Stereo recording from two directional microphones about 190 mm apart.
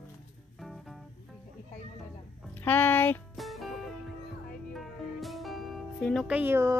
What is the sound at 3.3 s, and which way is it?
Music, centre (ahead or behind).